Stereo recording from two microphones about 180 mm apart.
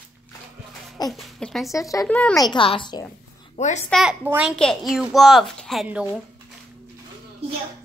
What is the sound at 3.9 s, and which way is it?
A woman's voice, 5° right (ahead or behind).